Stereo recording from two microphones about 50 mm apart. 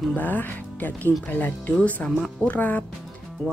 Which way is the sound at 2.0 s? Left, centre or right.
Left.